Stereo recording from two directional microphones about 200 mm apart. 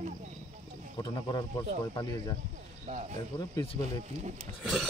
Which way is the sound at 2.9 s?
40° right (ahead or behind).